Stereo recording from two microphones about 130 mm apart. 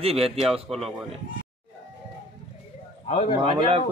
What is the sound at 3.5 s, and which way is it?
Speech, 40° right (ahead or behind).